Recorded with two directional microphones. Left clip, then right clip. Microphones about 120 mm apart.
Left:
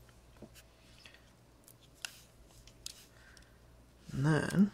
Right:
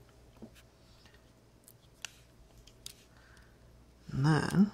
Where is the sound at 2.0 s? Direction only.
55° right (ahead or behind).